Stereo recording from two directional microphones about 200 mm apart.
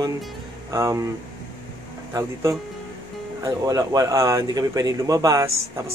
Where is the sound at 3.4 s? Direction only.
20° right (ahead or behind).